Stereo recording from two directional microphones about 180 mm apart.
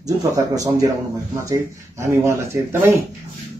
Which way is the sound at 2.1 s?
15° right (ahead or behind).